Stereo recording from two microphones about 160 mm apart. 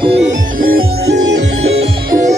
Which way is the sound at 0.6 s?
80° right.